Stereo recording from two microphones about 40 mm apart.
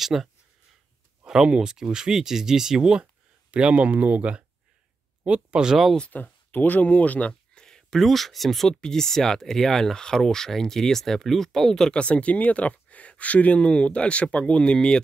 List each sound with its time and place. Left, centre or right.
0.0 s speech: centre; by 4.5 s right
5.2 s speech: right
6.0 s speech: left
7.5 s a sound: centre
8.0 s speech: centre
8.6 s speech: centre
11.9 s speech: left